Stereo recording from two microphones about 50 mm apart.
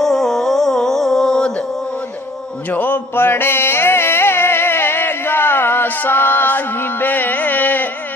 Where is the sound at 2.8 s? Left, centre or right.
Left.